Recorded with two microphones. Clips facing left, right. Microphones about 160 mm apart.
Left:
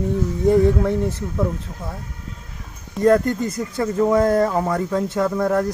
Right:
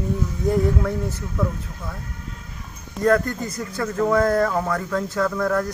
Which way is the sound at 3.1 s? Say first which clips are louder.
Left 3 dB; 20° left (ahead or behind).